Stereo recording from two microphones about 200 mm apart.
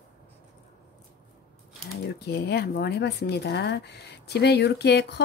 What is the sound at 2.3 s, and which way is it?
Speech, 55° left (ahead or behind).